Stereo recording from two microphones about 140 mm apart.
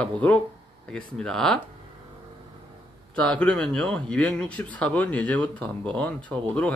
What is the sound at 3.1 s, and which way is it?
Speech, 10° left (ahead or behind).